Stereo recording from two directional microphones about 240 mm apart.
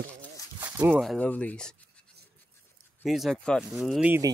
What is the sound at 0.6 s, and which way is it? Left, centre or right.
Speech, centre.